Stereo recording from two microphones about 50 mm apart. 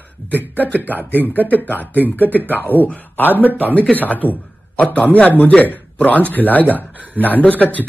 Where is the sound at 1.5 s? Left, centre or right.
Left.